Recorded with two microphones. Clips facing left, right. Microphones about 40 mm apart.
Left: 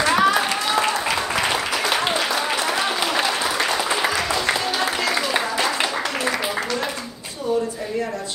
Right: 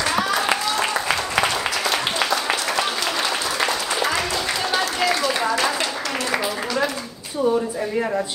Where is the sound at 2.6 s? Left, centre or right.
Centre.